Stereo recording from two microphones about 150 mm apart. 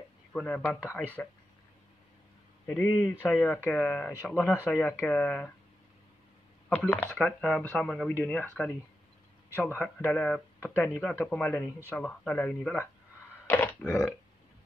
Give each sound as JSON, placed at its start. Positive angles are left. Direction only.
{"t": 0.3, "sound": "speech", "side_deg": 5}
{"t": 0.6, "sound": "speech", "side_deg": 15}
{"t": 2.6, "sound": "a man's voice", "side_deg": 10}
{"t": 6.7, "sound": "a man's voice", "side_deg": 10}
{"t": 13.5, "sound": "burping", "side_deg": 10}